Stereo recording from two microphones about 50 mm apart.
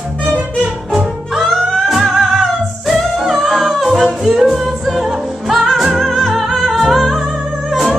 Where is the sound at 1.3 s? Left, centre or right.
Centre.